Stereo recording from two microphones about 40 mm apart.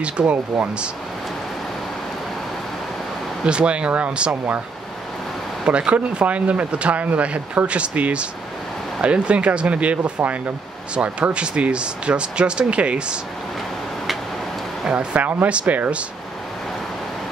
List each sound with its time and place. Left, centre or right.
0.0 s speech: right
3.4 s speech: right
5.7 s speech: right
15.1 s speech: right
15.4 s speech: right